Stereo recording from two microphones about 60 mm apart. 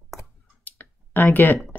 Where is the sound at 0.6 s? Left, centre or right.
Left.